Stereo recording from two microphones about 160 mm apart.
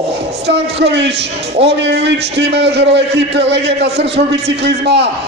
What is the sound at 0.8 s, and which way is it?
A man's voice, 90° right.